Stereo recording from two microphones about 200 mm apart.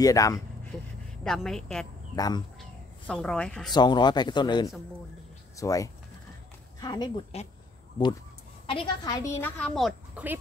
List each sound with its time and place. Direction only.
0.0 s speech: 15° left (ahead or behind)
1.2 s a woman's voice: centre (ahead or behind)
2.1 s a man's voice: 20° left (ahead or behind)
3.1 s a woman's voice: 5° left (ahead or behind)
3.7 s a man's voice: 20° left (ahead or behind)
8.6 s a woman's voice: 25° left (ahead or behind); by 10.4 s 10° right (ahead or behind)